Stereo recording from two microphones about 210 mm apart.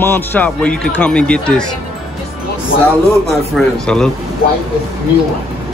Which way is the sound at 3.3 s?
Centre (ahead or behind).